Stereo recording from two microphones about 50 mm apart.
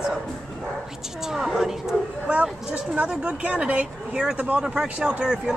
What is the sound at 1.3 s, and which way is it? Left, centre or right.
Speech, centre.